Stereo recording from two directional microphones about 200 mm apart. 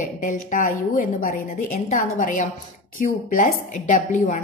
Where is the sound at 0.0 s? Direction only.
40° left (ahead or behind).